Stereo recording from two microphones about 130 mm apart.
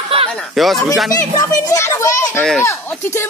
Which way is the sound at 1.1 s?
25° left (ahead or behind).